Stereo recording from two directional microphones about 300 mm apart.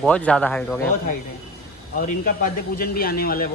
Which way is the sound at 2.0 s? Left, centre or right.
Left.